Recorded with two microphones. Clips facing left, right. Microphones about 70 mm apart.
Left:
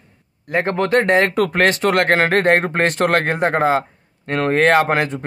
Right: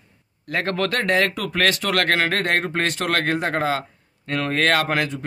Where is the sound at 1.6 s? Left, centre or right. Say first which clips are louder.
Left 3 dB; left.